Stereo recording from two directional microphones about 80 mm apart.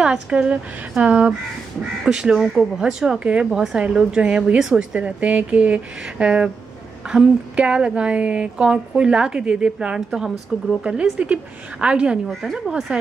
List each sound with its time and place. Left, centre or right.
0.0 s speech: centre
12.3 s speech: centre